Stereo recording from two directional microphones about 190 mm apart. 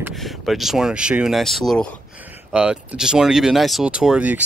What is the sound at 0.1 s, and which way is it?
Speech, centre (ahead or behind).